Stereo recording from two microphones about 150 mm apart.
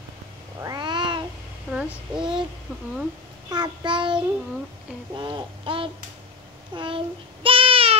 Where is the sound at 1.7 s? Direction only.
15° right (ahead or behind).